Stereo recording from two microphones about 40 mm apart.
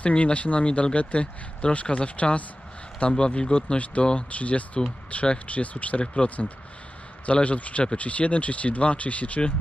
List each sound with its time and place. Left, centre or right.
0.0 s speech: left
7.4 s speech: left